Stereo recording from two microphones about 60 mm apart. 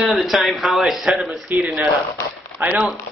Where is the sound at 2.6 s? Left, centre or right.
Right.